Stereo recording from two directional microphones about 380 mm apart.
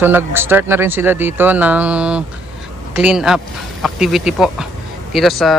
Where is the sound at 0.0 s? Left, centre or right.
Centre.